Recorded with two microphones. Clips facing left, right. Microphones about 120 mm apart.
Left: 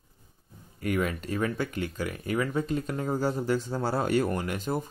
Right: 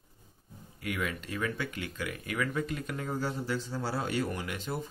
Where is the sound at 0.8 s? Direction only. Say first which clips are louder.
Left 6 dB; 40° left (ahead or behind).